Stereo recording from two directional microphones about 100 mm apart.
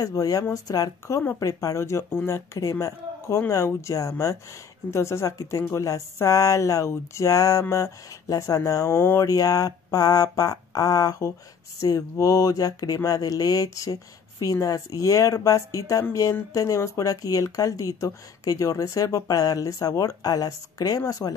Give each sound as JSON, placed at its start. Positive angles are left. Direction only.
{"t": 0.0, "sound": "speech", "side_deg": 40}
{"t": 9.2, "sound": "speech", "side_deg": 35}